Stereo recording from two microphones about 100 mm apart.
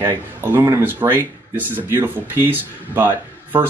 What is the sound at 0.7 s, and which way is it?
Speech, 20° right (ahead or behind).